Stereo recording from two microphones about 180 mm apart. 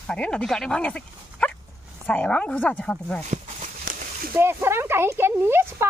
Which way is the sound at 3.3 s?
45° right (ahead or behind).